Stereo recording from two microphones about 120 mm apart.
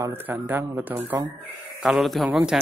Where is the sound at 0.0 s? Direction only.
15° right (ahead or behind).